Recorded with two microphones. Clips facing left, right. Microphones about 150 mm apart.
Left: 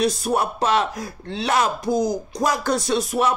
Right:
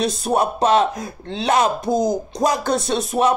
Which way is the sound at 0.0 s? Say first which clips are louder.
Right 2 dB; 25° right (ahead or behind).